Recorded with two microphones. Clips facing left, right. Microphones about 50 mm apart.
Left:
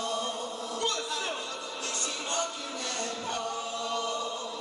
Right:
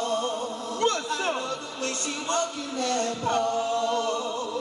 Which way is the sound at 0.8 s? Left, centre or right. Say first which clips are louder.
Right 7 dB; right.